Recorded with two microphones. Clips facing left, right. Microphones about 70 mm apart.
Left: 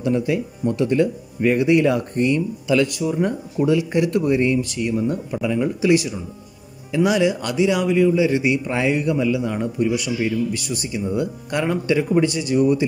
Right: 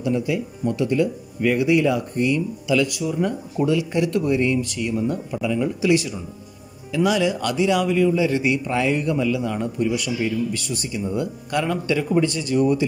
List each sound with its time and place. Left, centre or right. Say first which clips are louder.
0.0 s speech: left 2 dB; left
3.0 s speech: left 2 dB; left; by 12.8 s centre